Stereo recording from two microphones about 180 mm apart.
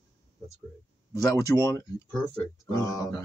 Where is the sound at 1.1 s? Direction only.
15° left (ahead or behind).